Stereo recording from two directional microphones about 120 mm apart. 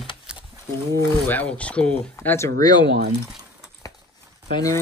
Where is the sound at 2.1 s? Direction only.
20° left (ahead or behind).